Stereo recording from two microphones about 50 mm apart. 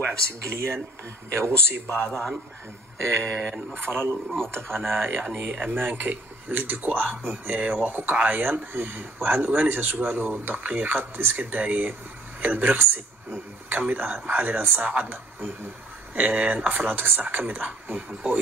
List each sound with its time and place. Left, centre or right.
0.4 s speech: right
3.3 s speech: right
3.7 s speech: right